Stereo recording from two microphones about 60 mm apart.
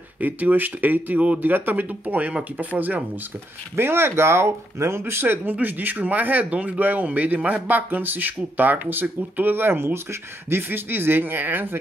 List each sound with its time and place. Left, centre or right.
0.2 s speech: right
3.7 s speech: right